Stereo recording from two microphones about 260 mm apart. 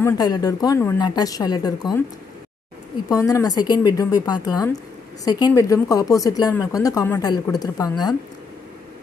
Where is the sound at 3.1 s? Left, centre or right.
Centre.